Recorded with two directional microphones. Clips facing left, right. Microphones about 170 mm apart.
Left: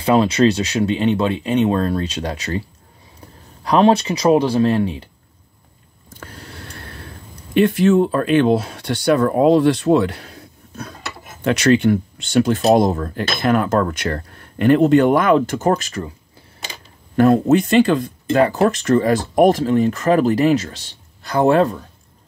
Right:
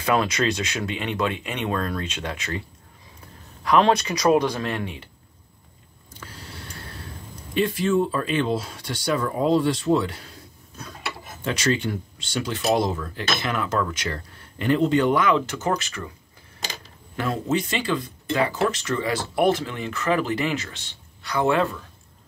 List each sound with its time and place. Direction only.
0.0 s speech: 30° left (ahead or behind)
3.6 s speech: 30° left (ahead or behind)
6.1 s a sound: 55° left (ahead or behind)
7.5 s speech: 65° left (ahead or behind)
12.5 s speech: 50° left (ahead or behind)
17.2 s speech: 60° left (ahead or behind); by 21.8 s 40° left (ahead or behind)